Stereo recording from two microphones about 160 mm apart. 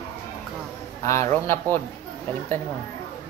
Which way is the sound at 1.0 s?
20° left (ahead or behind).